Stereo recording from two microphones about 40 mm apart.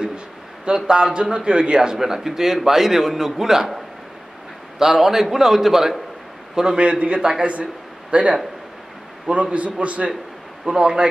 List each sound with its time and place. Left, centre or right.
0.7 s a man's voice: right
6.8 s a man's voice: right
7.2 s a man's voice: centre
8.1 s a man's voice: right
10.6 s speech: right